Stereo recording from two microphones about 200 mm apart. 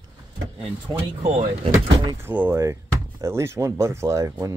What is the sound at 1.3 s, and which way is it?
Speech, 30° right (ahead or behind).